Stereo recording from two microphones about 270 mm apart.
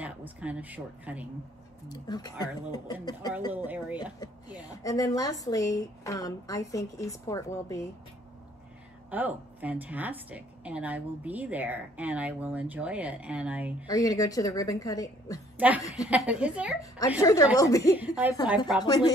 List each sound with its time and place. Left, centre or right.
0.0 s speech: centre
1.9 s a woman's voice: centre
3.5 s a woman's voice: centre
4.8 s a woman's voice: centre
9.1 s a woman's voice: centre
13.8 s a woman's voice: centre
15.5 s a woman's voice: centre
17.2 s a woman's voice: centre
17.9 s a woman's voice: centre
18.9 s a woman's voice: centre